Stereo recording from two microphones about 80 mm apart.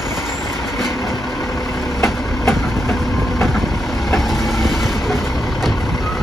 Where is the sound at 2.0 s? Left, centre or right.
Centre.